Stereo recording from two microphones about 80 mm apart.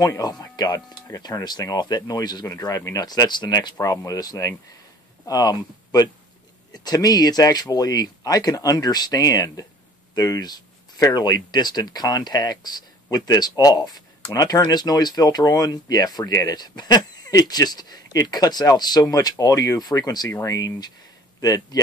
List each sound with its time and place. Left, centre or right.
0.0 s speech: left
1.0 s speech: left
20.2 s speech: left